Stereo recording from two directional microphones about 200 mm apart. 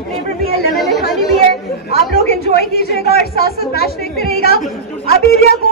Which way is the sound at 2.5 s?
55° left (ahead or behind).